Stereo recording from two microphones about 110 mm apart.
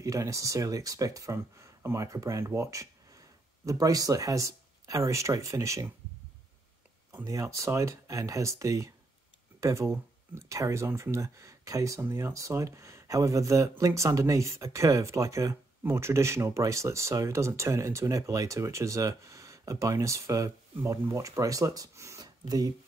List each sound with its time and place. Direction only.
0.0 s speech: 30° right (ahead or behind)
7.1 s speech: 25° right (ahead or behind)